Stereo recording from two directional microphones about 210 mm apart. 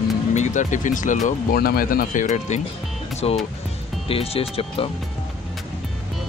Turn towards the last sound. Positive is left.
turn(degrees=25)  # may be behind; listen again after turning